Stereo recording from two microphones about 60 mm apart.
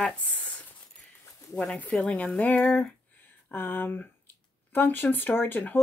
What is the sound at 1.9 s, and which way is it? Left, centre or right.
Speech, left.